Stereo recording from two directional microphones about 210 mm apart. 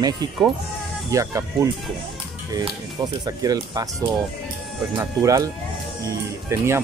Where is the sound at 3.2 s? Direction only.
15° right (ahead or behind).